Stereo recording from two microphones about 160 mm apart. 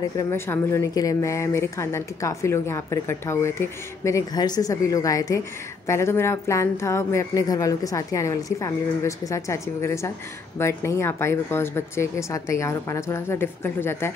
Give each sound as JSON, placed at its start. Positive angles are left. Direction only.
{"t": 0.2, "sound": "a woman's voice", "side_deg": 15}